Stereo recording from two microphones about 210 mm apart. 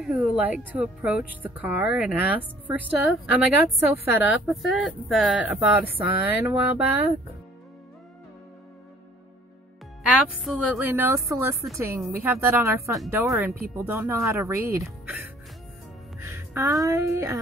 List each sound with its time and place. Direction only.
0.0 s speech: 5° right (ahead or behind)
10.0 s speech: 5° right (ahead or behind)
12.9 s speech: centre (ahead or behind)
16.2 s music: 15° right (ahead or behind)
16.8 s speech: 15° right (ahead or behind)